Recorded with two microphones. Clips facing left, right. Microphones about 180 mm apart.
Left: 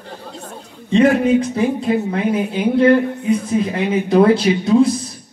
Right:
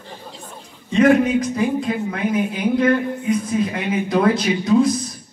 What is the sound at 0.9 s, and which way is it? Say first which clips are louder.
Speech: left 2 dB; 30° left (ahead or behind).